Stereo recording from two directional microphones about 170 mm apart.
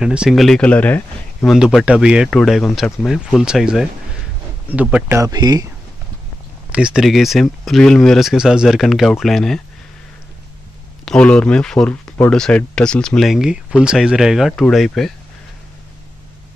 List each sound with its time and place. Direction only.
0.0 s speech: 5° right (ahead or behind); by 5.7 s 20° right (ahead or behind)
6.7 s speech: 5° right (ahead or behind)
11.1 s speech: 5° left (ahead or behind)